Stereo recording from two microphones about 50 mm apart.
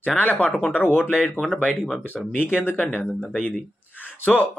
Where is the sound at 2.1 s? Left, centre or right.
Left.